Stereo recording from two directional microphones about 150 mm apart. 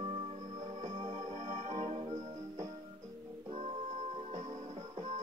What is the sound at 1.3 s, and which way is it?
Music, 55° right (ahead or behind).